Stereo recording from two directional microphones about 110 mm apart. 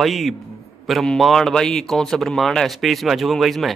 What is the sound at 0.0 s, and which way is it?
Speech, centre (ahead or behind).